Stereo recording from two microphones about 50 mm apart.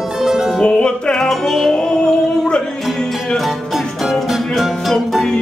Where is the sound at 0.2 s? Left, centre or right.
Centre.